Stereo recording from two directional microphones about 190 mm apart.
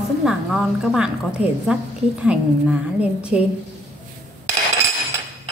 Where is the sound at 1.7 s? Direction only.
5° right (ahead or behind).